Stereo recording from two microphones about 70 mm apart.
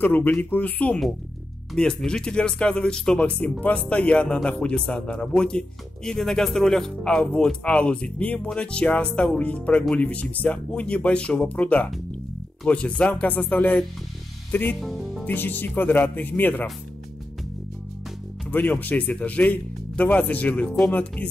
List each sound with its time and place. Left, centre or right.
0.0 s speech: left
1.8 s speech: centre; by 14.8 s left
14.8 s speech: centre
15.2 s speech: left
18.5 s speech: left